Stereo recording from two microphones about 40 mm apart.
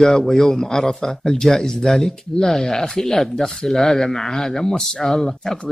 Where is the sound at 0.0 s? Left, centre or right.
Centre.